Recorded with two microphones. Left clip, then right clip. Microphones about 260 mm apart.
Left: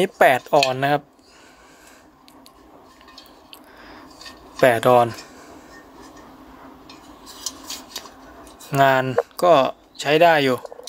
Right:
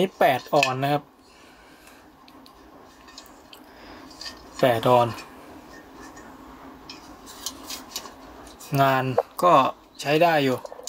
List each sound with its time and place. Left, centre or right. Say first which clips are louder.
0.0 s speech: left 5 dB; centre
3.8 s a sound: right 2 dB; centre
6.9 s cutlery: left 1 dB; centre
8.6 s speech: left 5 dB; centre